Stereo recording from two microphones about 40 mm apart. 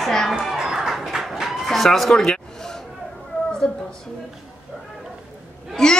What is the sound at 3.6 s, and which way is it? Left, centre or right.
Speech, left.